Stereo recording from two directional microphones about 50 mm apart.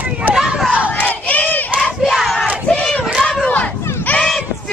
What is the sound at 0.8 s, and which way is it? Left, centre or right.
Crowd, left.